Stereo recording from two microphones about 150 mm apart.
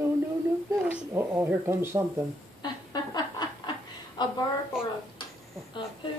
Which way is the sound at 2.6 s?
25° left (ahead or behind).